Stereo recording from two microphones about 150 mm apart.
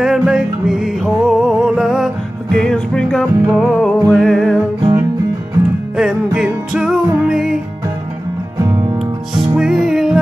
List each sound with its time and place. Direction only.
0.0 s music: 5° right (ahead or behind)
5.9 s music: 5° right (ahead or behind)
8.5 s music: 25° right (ahead or behind)
8.9 s music: 5° right (ahead or behind)